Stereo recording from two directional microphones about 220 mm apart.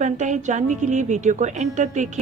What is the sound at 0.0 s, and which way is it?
A woman's voice, 35° right (ahead or behind).